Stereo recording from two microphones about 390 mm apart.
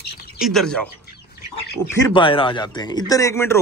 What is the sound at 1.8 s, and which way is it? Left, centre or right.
Speech, centre.